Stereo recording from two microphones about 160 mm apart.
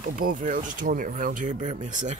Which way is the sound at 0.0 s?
60° right (ahead or behind).